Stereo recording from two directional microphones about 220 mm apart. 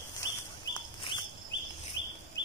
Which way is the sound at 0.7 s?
20° left (ahead or behind).